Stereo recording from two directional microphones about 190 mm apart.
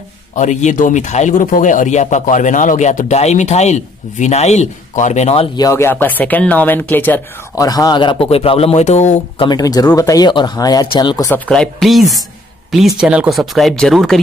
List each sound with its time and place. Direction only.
0.4 s speech: 40° left (ahead or behind)
5.6 s speech: 15° left (ahead or behind); by 9.5 s 35° left (ahead or behind)
9.5 s speech: 20° left (ahead or behind); by 14.2 s centre (ahead or behind)